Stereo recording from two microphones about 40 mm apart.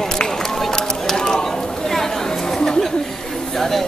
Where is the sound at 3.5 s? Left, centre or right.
Centre.